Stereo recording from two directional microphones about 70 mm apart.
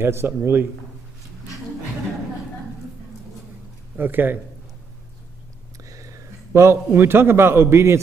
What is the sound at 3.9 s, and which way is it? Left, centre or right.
Speech, right.